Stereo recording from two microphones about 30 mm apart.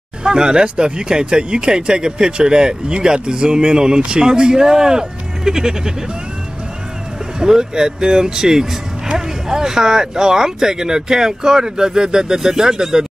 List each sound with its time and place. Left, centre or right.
0.2 s speech: right
7.3 s speech: right